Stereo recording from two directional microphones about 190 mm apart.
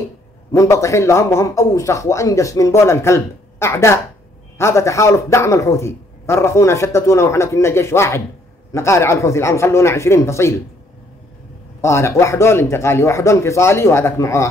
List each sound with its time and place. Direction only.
0.5 s a man's voice: 15° left (ahead or behind)
11.8 s a man's voice: 15° left (ahead or behind)